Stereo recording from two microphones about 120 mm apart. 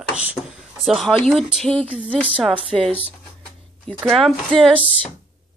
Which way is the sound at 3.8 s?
Centre (ahead or behind).